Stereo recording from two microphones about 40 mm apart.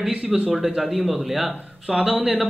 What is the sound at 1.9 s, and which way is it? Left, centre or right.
Speech, right.